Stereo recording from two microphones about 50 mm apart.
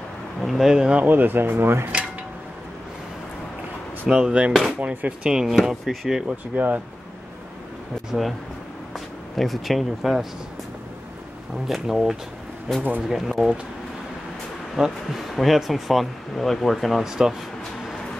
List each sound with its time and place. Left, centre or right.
0.4 s a sound: centre
0.7 s speech: centre
0.9 s speech: right
4.1 s speech: centre
4.5 s speech: centre
4.7 s speech: right
5.2 s speech: centre
6.2 s speech: right
8.1 s speech: centre
9.4 s speech: centre
11.6 s speech: centre
14.8 s speech: centre
17.1 s speech: centre